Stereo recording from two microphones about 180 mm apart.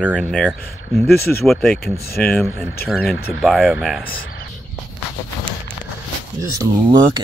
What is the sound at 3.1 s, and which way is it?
Speech, 60° left (ahead or behind).